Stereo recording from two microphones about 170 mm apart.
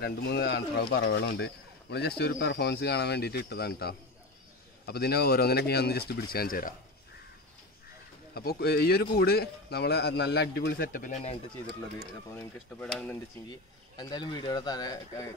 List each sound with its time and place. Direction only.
0.0 s speech: 70° left (ahead or behind)
0.9 s speech: 85° left; by 6.7 s 60° left (ahead or behind)
8.4 s speech: 70° left (ahead or behind); by 11.3 s 45° left (ahead or behind)
12.3 s speech: 15° left (ahead or behind)
13.5 s speech: 25° left (ahead or behind)